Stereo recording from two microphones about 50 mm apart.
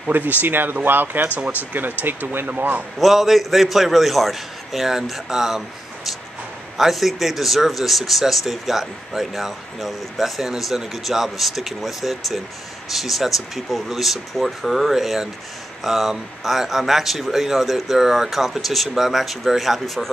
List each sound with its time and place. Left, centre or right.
0.1 s speech: right
3.0 s speech: centre
6.8 s speech: centre